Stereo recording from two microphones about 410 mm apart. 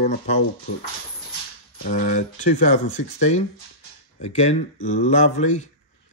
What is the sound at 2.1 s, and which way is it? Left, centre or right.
Speech, centre.